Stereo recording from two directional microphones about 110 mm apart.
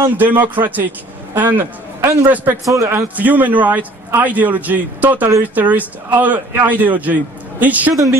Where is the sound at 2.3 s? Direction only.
20° right (ahead or behind).